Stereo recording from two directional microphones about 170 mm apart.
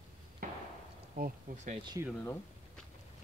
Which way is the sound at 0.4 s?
55° right (ahead or behind).